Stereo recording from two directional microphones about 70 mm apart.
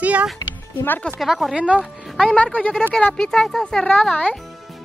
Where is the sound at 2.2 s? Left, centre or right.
Centre.